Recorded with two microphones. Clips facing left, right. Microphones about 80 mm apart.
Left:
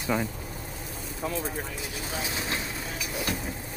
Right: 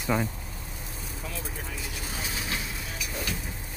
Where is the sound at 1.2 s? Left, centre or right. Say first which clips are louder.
Left 9 dB; left.